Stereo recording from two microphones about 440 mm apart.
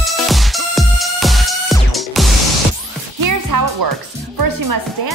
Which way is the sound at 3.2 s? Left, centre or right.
Right.